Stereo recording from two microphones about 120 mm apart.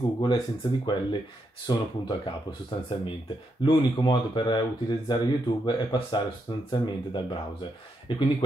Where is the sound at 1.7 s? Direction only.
35° left (ahead or behind).